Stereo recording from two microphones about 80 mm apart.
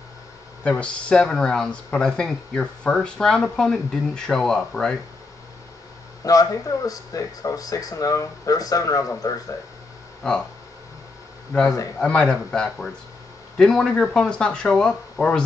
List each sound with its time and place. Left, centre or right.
0.7 s speech: centre
6.2 s speech: left
10.2 s speech: centre
12.0 s speech: centre